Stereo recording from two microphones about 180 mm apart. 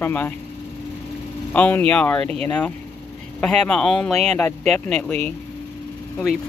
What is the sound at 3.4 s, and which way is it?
Speech, 5° left (ahead or behind).